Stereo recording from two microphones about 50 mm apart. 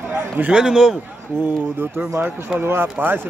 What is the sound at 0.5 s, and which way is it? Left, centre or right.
Speech, centre.